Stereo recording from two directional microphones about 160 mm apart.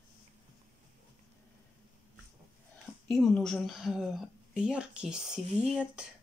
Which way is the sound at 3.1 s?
Centre (ahead or behind).